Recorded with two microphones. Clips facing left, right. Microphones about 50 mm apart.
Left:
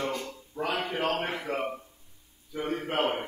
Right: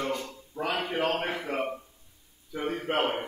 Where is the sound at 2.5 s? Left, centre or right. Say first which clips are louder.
Even; centre.